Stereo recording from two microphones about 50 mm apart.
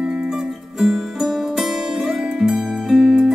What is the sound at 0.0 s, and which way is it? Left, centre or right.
Music, centre.